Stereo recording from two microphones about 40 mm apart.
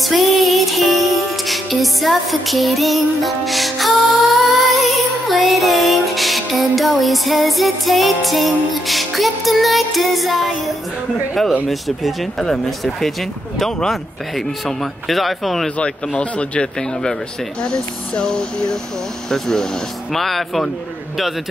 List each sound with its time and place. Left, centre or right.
0.0 s music: centre
11.7 s speech: centre
16.2 s speech: left; by 20.6 s centre